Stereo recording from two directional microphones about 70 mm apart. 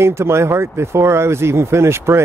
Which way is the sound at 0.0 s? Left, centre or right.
Right.